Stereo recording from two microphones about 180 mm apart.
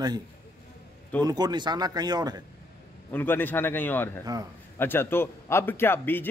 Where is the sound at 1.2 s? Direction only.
20° right (ahead or behind).